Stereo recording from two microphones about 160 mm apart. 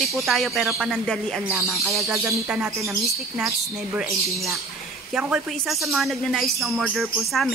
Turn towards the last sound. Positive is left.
turn(degrees=0)  # may be behind; listen again after turning